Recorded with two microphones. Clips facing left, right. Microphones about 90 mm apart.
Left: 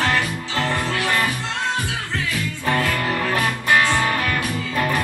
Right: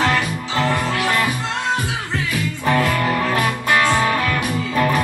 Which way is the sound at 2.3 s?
15° right (ahead or behind).